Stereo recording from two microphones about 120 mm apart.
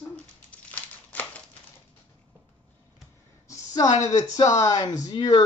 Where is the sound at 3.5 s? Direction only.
30° left (ahead or behind).